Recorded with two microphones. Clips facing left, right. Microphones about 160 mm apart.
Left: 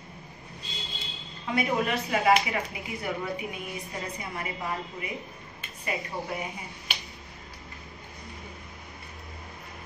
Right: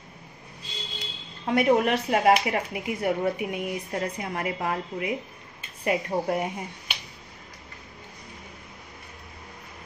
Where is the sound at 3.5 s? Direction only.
70° right (ahead or behind).